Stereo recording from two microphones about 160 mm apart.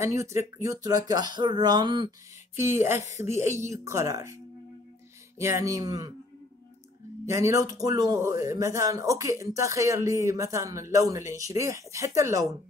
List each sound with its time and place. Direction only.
0.0 s speech: 20° right (ahead or behind)
2.5 s speech: 15° right (ahead or behind)
5.4 s speech: 20° right (ahead or behind)
7.2 s speech: 20° right (ahead or behind)